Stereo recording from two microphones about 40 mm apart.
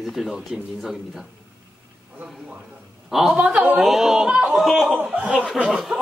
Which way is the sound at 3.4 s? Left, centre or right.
Right.